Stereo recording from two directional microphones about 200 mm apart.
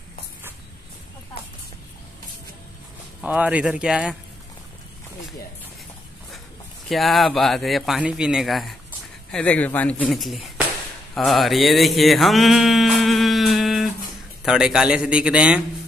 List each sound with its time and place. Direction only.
3.2 s a man's voice: 5° right (ahead or behind)
6.9 s a man's voice: centre (ahead or behind)
11.1 s a sound: centre (ahead or behind)
14.4 s a man's voice: 5° right (ahead or behind)